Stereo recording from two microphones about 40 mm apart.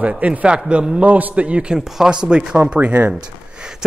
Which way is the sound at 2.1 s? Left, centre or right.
Right.